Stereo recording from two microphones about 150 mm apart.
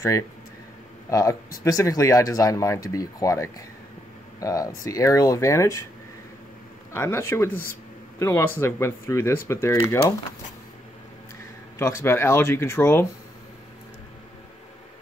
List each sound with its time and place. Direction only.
1.6 s speech: 20° left (ahead or behind)
6.9 s speech: 15° left (ahead or behind)
11.8 s speech: 15° left (ahead or behind)